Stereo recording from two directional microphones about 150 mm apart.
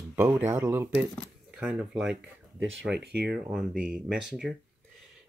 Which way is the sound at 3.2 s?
5° right (ahead or behind).